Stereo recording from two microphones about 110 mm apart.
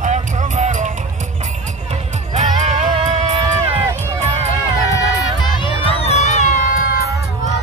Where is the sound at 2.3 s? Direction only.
90° right; by 3.8 s 70° right (ahead or behind).